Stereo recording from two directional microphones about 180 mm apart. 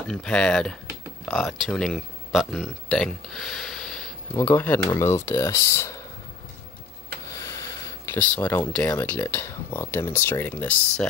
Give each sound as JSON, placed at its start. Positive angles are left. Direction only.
{"t": 0.1, "sound": "speech", "side_deg": 5}
{"t": 7.3, "sound": "a sound", "side_deg": 15}
{"t": 8.1, "sound": "speech", "side_deg": 10}